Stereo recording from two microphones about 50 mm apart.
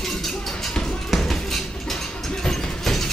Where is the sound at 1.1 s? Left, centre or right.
Centre.